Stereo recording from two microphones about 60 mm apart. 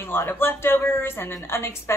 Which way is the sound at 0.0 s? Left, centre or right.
Left.